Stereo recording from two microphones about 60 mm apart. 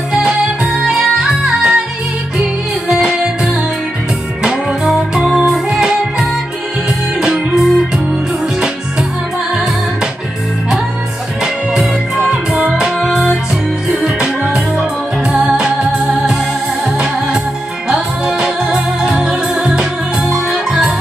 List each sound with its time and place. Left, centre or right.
0.1 s music: centre
2.9 s music: centre
11.4 s music: centre
17.8 s music: centre